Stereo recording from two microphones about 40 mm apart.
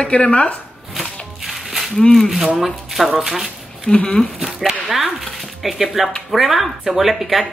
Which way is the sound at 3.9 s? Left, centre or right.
Left.